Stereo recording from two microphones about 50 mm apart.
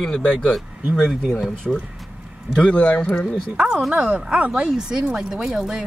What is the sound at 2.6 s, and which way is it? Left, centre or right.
Speech, left.